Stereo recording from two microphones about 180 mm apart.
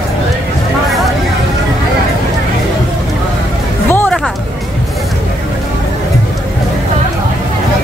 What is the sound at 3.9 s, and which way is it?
Music, 10° left (ahead or behind).